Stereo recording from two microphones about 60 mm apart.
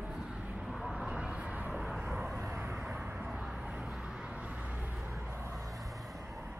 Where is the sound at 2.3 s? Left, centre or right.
Right.